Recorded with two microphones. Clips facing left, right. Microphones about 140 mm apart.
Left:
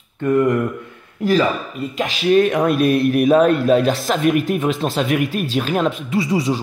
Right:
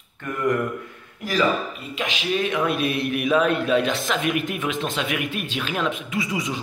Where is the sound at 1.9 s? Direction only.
45° left (ahead or behind).